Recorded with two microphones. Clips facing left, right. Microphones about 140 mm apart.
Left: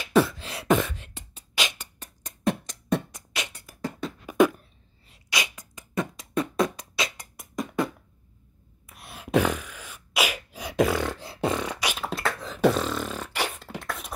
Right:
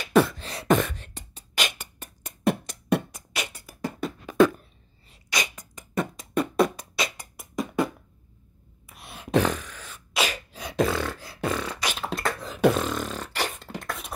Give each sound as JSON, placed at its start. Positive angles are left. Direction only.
{"t": 0.0, "sound": "beatboxing", "side_deg": 0}
{"t": 4.4, "sound": "a sound", "side_deg": 15}
{"t": 5.0, "sound": "beatboxing", "side_deg": 0}
{"t": 8.8, "sound": "sneeze", "side_deg": 0}